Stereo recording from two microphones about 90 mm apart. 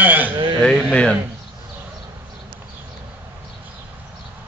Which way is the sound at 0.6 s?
5° left (ahead or behind).